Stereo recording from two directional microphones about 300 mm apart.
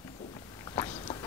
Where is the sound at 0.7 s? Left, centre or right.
Centre.